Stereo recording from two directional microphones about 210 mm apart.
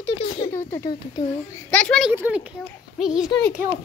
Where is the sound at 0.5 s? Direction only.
15° left (ahead or behind).